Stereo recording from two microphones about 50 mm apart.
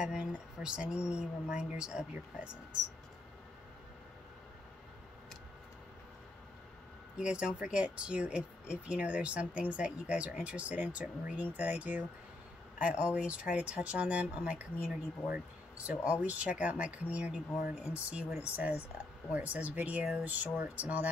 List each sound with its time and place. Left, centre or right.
0.0 s speech: centre
7.2 s speech: right
18.4 s speech: right